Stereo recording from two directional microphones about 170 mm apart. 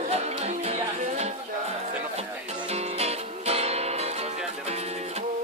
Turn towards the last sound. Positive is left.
turn(degrees=-40)  # may be behind; listen again after turning